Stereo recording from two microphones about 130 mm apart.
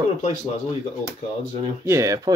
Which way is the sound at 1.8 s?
25° right (ahead or behind).